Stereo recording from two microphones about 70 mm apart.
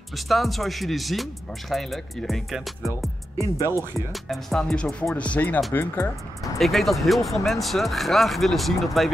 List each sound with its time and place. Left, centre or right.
0.1 s speech: centre
3.6 s speech: right
4.1 s speech: centre
4.6 s speech: centre
5.7 s speech: left
6.6 s speech: centre